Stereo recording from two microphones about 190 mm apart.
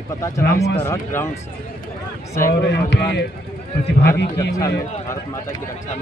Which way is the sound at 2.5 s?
60° left (ahead or behind).